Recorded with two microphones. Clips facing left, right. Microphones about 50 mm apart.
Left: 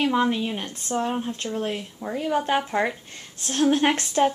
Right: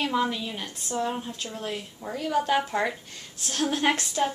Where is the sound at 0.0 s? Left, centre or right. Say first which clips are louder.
Left 4 dB; left.